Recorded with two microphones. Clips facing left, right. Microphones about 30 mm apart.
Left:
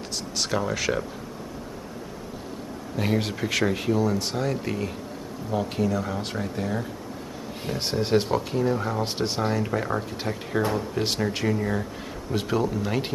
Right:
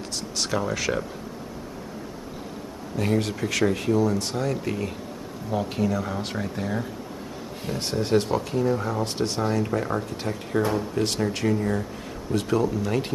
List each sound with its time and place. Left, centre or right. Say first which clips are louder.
0.4 s speech: even; centre
3.0 s speech: right 1 dB; centre
7.6 s speech: even; centre
10.6 s speech: right 1 dB; left
11.0 s speech: right 1 dB; centre